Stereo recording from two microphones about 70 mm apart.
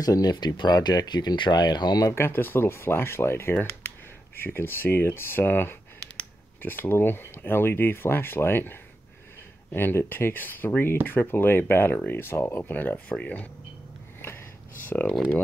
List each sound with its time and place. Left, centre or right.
0.0 s speech: left
2.1 s speech: left
14.9 s speech: left